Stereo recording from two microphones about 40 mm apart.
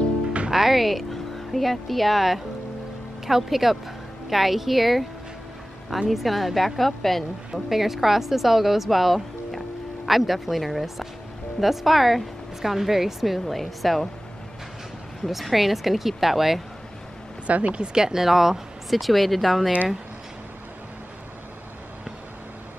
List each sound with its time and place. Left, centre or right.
0.5 s speech: centre
6.0 s speech: centre
7.7 s speech: centre
15.2 s speech: centre
17.5 s speech: right
17.9 s speech: centre